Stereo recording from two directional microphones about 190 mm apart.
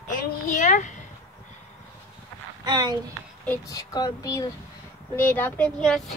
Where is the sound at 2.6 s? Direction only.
20° right (ahead or behind).